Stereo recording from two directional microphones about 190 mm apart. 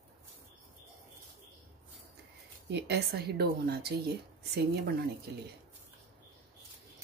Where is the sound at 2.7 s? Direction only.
60° right (ahead or behind).